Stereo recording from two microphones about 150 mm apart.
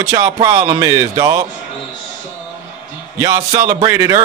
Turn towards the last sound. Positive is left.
turn(degrees=-25)  # may be behind; listen again after turning